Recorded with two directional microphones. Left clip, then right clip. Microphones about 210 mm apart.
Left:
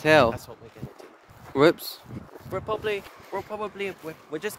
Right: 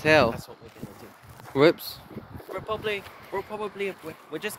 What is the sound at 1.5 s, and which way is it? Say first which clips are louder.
Speech: even; 10° left (ahead or behind).